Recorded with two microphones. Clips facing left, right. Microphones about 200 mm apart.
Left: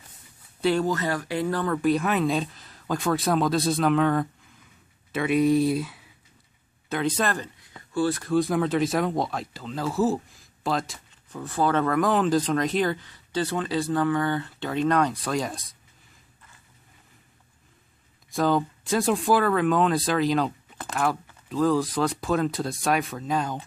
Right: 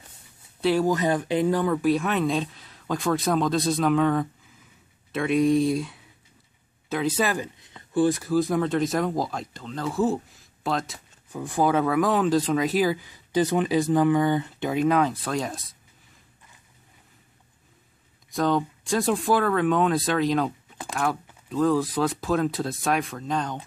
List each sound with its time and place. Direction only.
0.6 s speech: centre (ahead or behind)
0.8 s speech: 15° right (ahead or behind)
1.8 s speech: centre (ahead or behind)
7.6 s a sound: 20° right (ahead or behind)
8.2 s speech: centre (ahead or behind)
11.2 s speech: 15° right (ahead or behind)
18.3 s speech: 5° left (ahead or behind)